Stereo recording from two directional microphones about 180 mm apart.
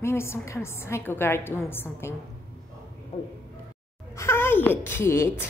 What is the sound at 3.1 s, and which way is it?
Speech, 30° left (ahead or behind).